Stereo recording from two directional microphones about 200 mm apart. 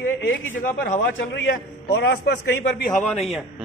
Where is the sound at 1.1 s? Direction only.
70° left (ahead or behind).